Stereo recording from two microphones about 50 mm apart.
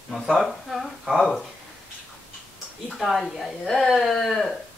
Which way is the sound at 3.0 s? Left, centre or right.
Centre.